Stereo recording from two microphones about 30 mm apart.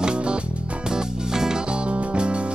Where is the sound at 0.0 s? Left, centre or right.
Right.